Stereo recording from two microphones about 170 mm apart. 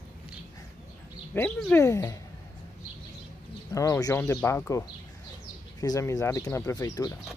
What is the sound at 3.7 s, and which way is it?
Speech, 20° left (ahead or behind).